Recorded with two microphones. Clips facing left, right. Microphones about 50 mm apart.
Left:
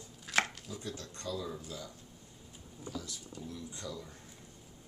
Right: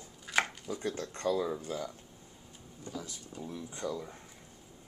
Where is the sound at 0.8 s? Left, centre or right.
Right.